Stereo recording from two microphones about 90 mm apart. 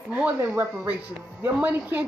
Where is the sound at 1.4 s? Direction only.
20° right (ahead or behind).